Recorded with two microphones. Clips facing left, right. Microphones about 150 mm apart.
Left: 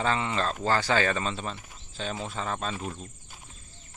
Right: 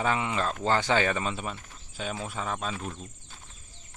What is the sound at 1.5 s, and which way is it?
Speech, 10° left (ahead or behind).